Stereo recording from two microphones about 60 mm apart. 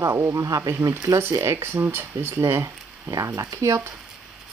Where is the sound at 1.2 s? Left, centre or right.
Right.